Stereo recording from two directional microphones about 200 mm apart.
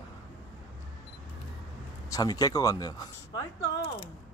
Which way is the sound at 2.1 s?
20° left (ahead or behind).